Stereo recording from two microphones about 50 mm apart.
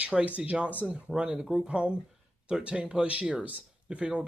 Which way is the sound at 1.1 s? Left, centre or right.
Centre.